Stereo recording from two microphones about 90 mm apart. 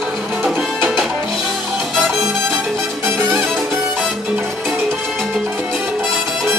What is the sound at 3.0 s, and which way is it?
Music, 30° right (ahead or behind).